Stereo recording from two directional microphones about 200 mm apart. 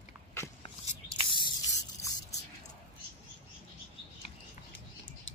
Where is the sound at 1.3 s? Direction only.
25° left (ahead or behind).